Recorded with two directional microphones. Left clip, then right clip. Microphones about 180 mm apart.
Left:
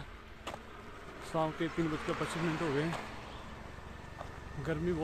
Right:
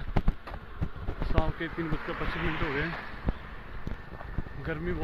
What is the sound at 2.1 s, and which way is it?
Speech, 65° left (ahead or behind).